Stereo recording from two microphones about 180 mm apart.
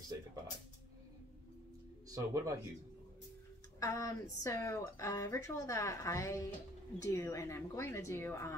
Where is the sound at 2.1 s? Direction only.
20° right (ahead or behind).